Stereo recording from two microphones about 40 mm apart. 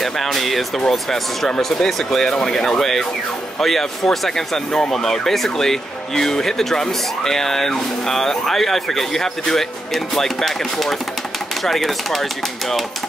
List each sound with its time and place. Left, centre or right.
0.0 s speech: centre
2.3 s speech: centre
2.8 s speech: centre